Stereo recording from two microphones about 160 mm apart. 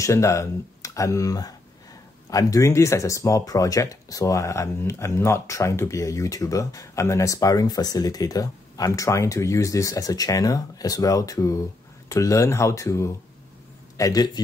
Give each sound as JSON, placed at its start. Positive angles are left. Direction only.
{"t": 0.0, "sound": "speech", "side_deg": 20}